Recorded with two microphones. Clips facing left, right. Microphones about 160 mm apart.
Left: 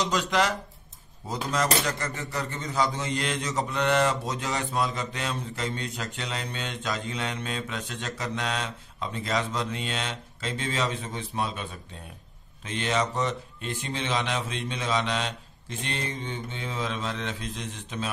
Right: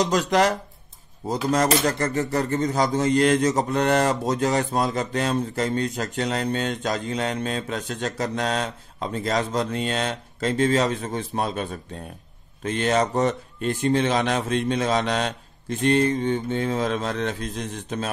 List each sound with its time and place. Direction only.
0.0 s cutlery: 45° right (ahead or behind)